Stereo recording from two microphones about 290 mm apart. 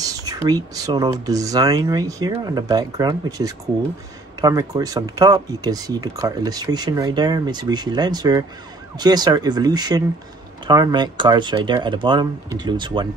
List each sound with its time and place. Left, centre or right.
0.0 s speech: centre